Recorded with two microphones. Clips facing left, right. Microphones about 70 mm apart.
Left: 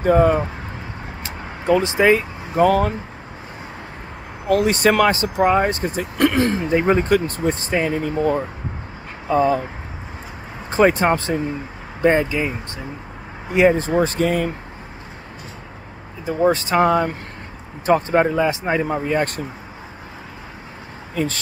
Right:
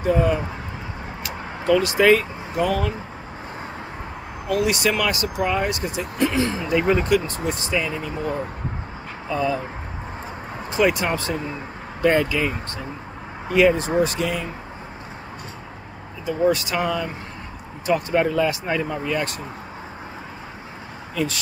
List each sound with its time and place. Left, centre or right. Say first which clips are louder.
0.0 s speech: left 5 dB; left
1.2 s vehicle: even; left
2.5 s speech: left 7 dB; left
4.5 s speech: left 5 dB; left
6.1 s speech: left 4 dB; left
6.7 s speech: left 1 dB; left
10.7 s speech: left 5 dB; left
16.3 s speech: left 3 dB; left
18.9 s speech: left 4 dB; left
21.1 s speech: left 2 dB; left